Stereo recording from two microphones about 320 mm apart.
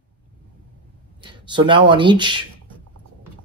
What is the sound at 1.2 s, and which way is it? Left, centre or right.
Speech, centre.